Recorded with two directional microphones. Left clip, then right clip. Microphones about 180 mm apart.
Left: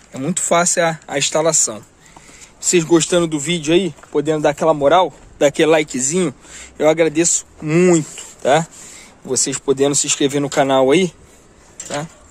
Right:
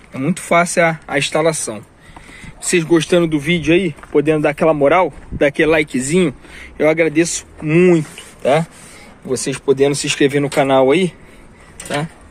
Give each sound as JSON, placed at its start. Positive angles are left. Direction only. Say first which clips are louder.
{"t": 0.1, "sound": "speech", "louder": "right 2 dB", "side_deg": 10}